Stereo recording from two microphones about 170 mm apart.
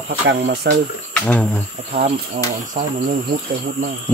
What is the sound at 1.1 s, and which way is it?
Cricket, 10° left (ahead or behind).